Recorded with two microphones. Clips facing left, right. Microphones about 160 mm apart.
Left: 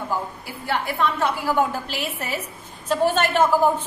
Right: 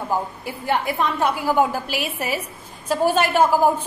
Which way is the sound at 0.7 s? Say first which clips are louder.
Right 2 dB; 20° right (ahead or behind).